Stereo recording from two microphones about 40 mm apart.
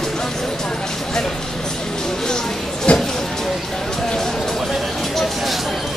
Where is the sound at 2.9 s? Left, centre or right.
Left.